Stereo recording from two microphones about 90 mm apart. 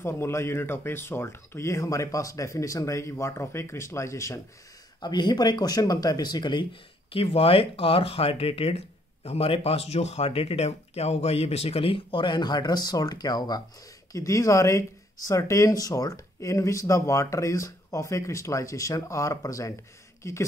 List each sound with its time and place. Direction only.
0.0 s speech: 30° left (ahead or behind)
5.0 s speech: 50° left (ahead or behind)
14.1 s speech: 40° left (ahead or behind)